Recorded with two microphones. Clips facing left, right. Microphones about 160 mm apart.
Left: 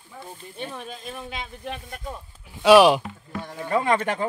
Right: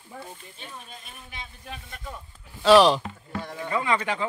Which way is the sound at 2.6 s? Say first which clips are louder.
Left 2 dB; 10° left (ahead or behind).